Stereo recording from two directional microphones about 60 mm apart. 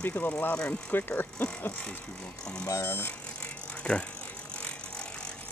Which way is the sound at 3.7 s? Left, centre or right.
Centre.